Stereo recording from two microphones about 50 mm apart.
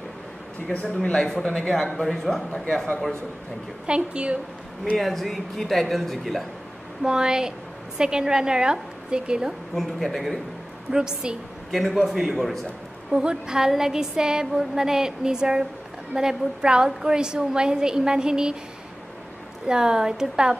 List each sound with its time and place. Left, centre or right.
0.7 s speech: centre
3.8 s a woman's voice: centre
4.9 s speech: centre
7.0 s a woman's voice: centre
9.8 s speech: centre
10.9 s a woman's voice: centre
11.7 s speech: centre
13.1 s a woman's voice: centre
19.7 s a woman's voice: centre